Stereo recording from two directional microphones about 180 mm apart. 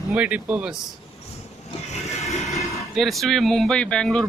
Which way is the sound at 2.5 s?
15° left (ahead or behind).